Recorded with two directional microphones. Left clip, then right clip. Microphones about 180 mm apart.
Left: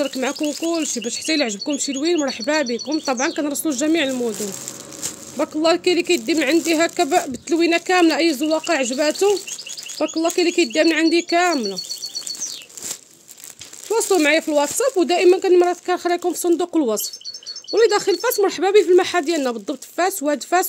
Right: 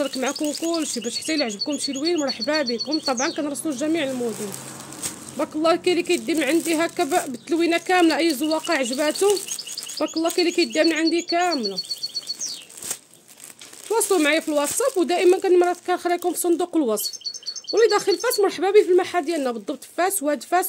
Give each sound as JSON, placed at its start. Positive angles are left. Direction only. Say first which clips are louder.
{"t": 0.0, "sound": "speech", "louder": "left 2 dB", "side_deg": 20}
{"t": 5.4, "sound": "speech", "louder": "left 3 dB", "side_deg": 20}
{"t": 13.8, "sound": "speech", "louder": "left 3 dB", "side_deg": 15}